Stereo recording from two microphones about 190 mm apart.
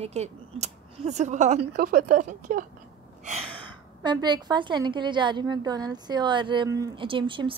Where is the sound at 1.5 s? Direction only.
50° right (ahead or behind).